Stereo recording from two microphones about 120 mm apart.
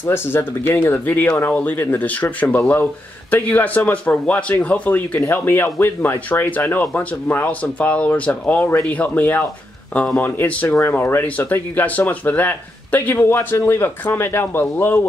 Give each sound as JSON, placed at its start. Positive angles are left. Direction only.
{"t": 0.0, "sound": "speech", "side_deg": 20}